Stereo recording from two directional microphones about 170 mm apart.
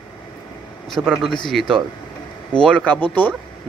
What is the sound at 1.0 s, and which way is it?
Speech, 5° right (ahead or behind).